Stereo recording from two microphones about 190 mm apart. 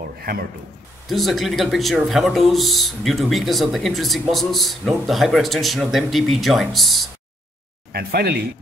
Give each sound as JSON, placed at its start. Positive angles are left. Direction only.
{"t": 0.2, "sound": "a man's voice", "side_deg": -50}
{"t": 1.0, "sound": "speech", "side_deg": 0}
{"t": 7.9, "sound": "speech", "side_deg": -55}